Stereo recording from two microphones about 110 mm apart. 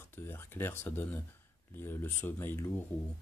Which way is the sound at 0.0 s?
20° left (ahead or behind).